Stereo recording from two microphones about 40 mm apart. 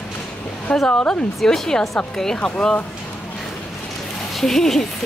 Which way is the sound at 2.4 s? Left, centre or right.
Left.